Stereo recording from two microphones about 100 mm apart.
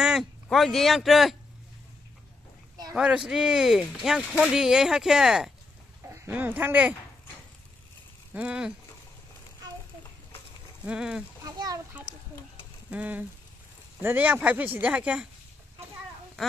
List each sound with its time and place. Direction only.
0.0 s speech: 5° right (ahead or behind)
3.0 s speech: 5° right (ahead or behind)
6.0 s speech: 20° right (ahead or behind)
8.3 s speech: 10° right (ahead or behind)
10.9 s speech: 5° right (ahead or behind)
11.4 s a sound: 40° right (ahead or behind)
12.9 s speech: 15° right (ahead or behind)